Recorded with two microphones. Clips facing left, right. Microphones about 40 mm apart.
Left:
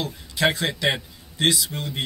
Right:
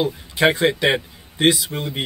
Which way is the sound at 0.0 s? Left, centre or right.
Right.